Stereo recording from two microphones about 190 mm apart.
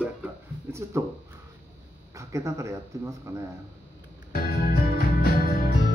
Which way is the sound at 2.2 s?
15° right (ahead or behind).